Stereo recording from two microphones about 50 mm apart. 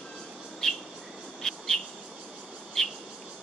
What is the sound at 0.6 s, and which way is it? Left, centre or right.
Bird, centre.